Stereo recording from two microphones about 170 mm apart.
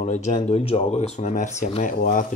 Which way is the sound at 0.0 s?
45° left (ahead or behind).